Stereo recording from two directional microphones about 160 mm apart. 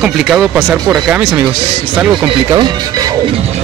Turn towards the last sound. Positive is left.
turn(degrees=-25)  # may be behind; listen again after turning